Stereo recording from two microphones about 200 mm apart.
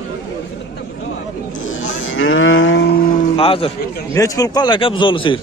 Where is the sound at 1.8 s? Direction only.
75° left (ahead or behind); by 3.0 s 55° left (ahead or behind).